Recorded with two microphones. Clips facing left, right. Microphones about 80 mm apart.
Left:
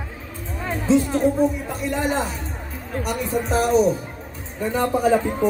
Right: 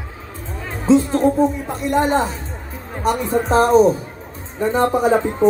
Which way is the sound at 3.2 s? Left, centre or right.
Right.